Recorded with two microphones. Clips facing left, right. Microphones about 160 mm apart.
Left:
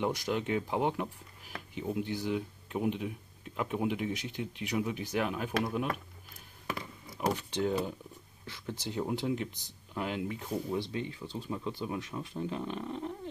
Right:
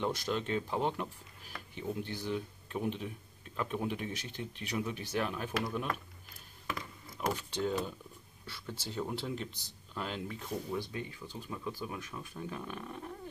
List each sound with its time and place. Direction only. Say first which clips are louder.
0.0 s speech: left 2 dB; 15° left (ahead or behind)
7.2 s speech: left 3 dB; 15° left (ahead or behind)